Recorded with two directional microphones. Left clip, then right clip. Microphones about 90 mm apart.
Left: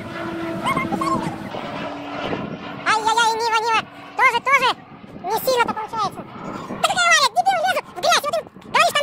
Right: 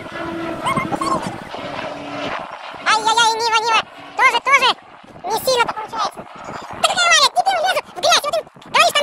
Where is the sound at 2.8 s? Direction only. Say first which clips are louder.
Right 3 dB; centre (ahead or behind).